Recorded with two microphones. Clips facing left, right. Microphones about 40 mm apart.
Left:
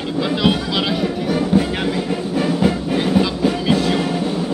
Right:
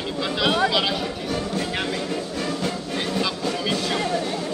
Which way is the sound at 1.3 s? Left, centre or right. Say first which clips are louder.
Left 10 dB; centre.